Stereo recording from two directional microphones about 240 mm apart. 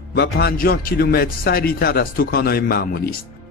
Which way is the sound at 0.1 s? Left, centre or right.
Left.